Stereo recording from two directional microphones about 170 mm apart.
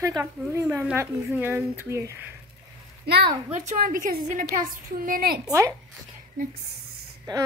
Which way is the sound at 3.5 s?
45° right (ahead or behind).